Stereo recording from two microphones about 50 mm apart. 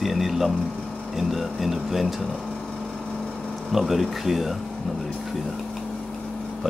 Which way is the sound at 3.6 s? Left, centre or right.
Centre.